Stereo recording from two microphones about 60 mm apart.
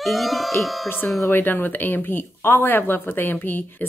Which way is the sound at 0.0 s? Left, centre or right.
Centre.